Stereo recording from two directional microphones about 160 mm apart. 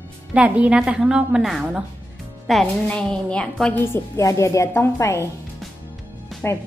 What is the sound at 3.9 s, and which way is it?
A woman's voice, 20° left (ahead or behind).